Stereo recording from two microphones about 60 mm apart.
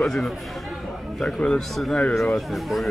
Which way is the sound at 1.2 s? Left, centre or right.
Centre.